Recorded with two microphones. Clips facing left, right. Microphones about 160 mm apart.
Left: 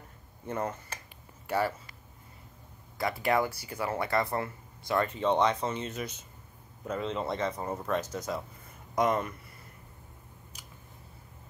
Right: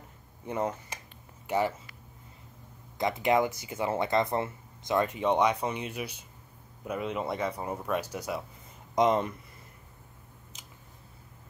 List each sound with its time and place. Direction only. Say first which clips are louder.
0.5 s speech: right 2 dB; 15° right (ahead or behind)
3.0 s speech: right 2 dB; 20° right (ahead or behind)
8.9 s speech: right 3 dB; 25° right (ahead or behind)
10.5 s scissors: left 1 dB; 20° right (ahead or behind)